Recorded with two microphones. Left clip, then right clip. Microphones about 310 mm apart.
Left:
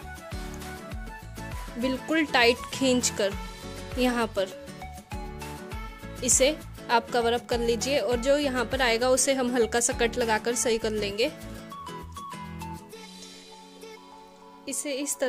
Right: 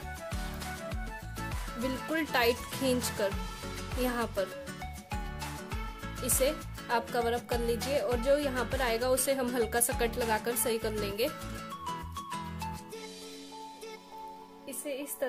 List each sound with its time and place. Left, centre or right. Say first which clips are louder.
1.9 s a woman's voice: left 7 dB; left
6.2 s a woman's voice: left 7 dB; left
11.8 s music: even; centre
14.7 s a woman's voice: left 7 dB; left